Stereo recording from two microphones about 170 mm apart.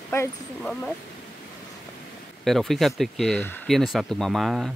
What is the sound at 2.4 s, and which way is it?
Speech, centre (ahead or behind).